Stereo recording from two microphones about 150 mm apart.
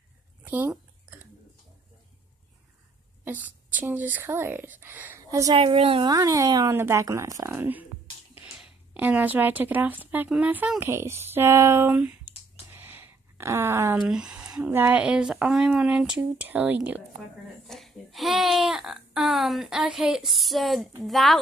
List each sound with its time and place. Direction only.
0.4 s a sound: 10° right (ahead or behind)
3.3 s speech: 10° right (ahead or behind)
5.5 s a woman's voice: 35° right (ahead or behind)
6.0 s a woman's voice: 25° right (ahead or behind)
12.7 s a sound: 15° right (ahead or behind)
14.0 s speech: 5° right (ahead or behind)
17.6 s speech: centre (ahead or behind)